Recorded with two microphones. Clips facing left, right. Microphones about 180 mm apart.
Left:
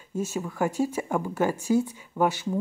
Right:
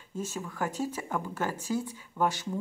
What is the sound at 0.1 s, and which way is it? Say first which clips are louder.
A woman's voice: left 6 dB; 10° left (ahead or behind).